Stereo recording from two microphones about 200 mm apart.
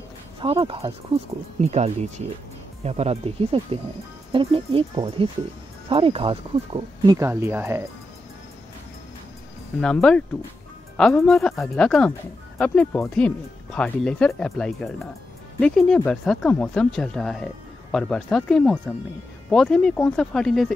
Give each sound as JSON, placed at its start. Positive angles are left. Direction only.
{"t": 0.4, "sound": "speech", "side_deg": -25}
{"t": 7.2, "sound": "speech", "side_deg": -10}
{"t": 9.8, "sound": "speech", "side_deg": 5}